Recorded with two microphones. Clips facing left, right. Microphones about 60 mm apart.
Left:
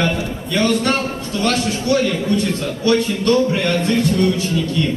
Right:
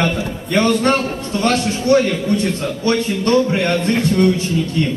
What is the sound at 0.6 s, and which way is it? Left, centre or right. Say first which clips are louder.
A man's voice: right 2 dB; right.